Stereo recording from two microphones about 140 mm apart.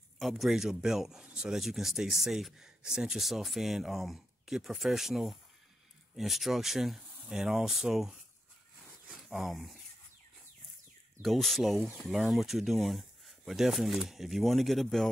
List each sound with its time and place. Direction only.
0.2 s speech: centre (ahead or behind)
11.2 s speech: centre (ahead or behind)